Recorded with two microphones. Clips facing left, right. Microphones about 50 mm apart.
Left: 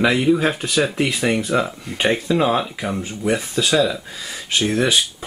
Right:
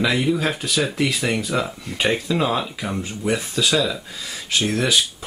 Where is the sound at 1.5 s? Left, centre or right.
Centre.